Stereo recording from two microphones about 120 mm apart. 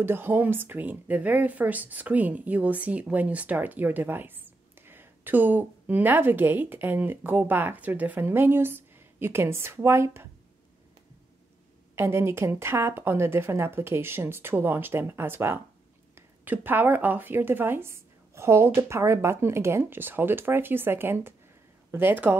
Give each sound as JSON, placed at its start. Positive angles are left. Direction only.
{"t": 0.0, "sound": "speech", "side_deg": -15}
{"t": 11.9, "sound": "a woman's voice", "side_deg": -20}